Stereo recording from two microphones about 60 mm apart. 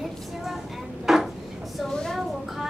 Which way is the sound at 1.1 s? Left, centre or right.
Centre.